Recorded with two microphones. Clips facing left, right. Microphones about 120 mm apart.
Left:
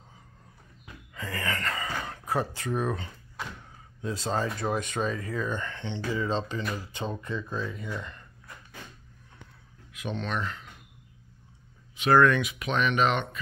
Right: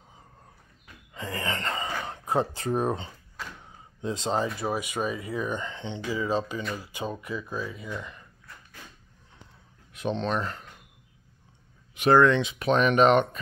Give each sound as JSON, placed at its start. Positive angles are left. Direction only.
{"t": 1.1, "sound": "a sound", "side_deg": -20}
{"t": 4.0, "sound": "speech", "side_deg": -20}
{"t": 4.6, "sound": "speech", "side_deg": -10}
{"t": 9.9, "sound": "speech", "side_deg": -30}
{"t": 12.1, "sound": "speech", "side_deg": -20}